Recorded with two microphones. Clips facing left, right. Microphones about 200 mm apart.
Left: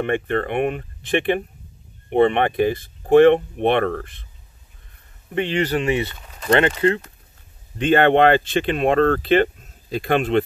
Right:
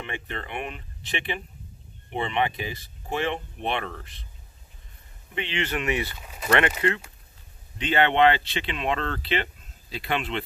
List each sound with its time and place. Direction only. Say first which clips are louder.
0.0 s speech: left 14 dB; 55° left (ahead or behind)
5.3 s speech: left 9 dB; 45° left (ahead or behind); by 6.1 s 30° left (ahead or behind)
6.2 s a sound: left 2 dB; 10° right (ahead or behind)
6.8 s speech: left 7 dB; 35° left (ahead or behind)
7.8 s speech: left 6 dB; 50° left (ahead or behind)